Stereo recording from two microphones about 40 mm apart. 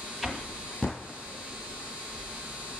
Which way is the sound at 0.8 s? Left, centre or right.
Left.